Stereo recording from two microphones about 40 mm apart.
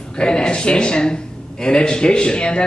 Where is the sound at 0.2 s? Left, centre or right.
Left.